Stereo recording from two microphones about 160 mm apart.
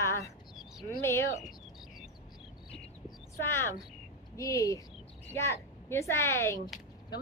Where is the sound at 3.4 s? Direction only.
15° left (ahead or behind).